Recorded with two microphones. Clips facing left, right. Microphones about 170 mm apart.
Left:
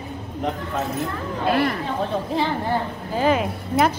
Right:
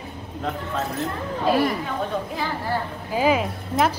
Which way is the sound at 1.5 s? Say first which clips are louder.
Even; 10° right (ahead or behind).